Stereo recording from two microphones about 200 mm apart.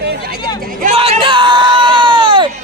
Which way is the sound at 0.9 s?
30° right (ahead or behind).